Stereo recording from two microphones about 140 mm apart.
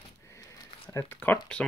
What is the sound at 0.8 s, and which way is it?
Speech, 15° left (ahead or behind).